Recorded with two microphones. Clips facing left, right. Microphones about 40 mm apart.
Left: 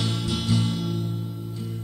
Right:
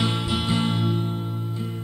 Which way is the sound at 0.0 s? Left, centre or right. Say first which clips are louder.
Right 3 dB; right.